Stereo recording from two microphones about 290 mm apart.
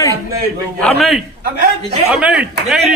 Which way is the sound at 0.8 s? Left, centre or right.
Centre.